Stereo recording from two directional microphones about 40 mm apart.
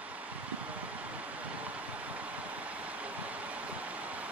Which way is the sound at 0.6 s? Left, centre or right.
Right.